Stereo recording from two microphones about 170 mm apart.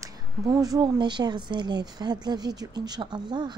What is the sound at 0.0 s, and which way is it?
Speech, 20° right (ahead or behind).